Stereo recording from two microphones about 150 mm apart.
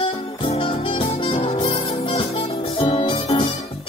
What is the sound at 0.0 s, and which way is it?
Music, 35° left (ahead or behind).